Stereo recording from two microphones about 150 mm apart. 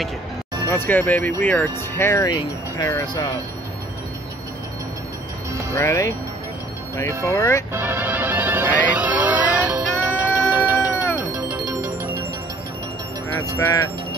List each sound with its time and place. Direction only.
0.7 s speech: 15° left (ahead or behind)
5.8 s speech: 20° left (ahead or behind)
7.7 s music: 15° right (ahead or behind)
13.4 s speech: 20° left (ahead or behind)